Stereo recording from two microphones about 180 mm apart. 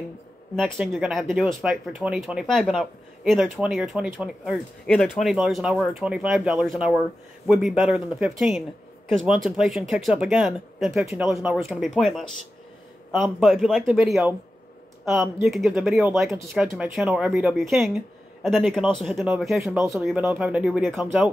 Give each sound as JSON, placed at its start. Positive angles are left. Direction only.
{"t": 0.6, "sound": "speech", "side_deg": 0}
{"t": 15.4, "sound": "speech", "side_deg": 0}